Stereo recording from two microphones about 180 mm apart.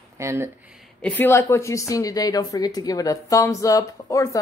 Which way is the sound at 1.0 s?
10° left (ahead or behind).